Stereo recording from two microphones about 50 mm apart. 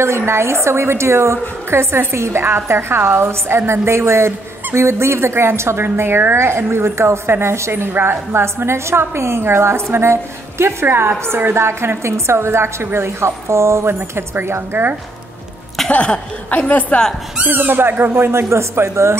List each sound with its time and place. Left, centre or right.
0.3 s a woman's voice: right
7.7 s a woman's voice: right
15.9 s speech: left
17.4 s speech: right
18.5 s a woman's voice: right